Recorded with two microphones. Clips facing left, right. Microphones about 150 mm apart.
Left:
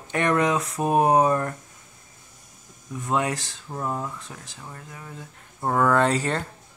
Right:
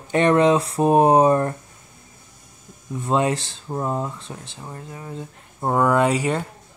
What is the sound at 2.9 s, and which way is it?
Speech, 30° right (ahead or behind).